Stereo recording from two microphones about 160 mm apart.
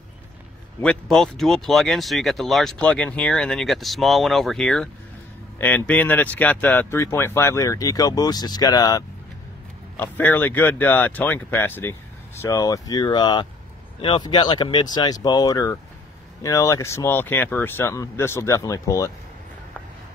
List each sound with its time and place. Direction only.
0.7 s speech: 5° left (ahead or behind); by 9.0 s 25° left (ahead or behind)
9.9 s speech: 10° left (ahead or behind)